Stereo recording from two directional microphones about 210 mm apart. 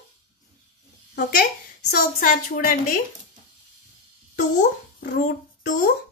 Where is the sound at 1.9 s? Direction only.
40° left (ahead or behind).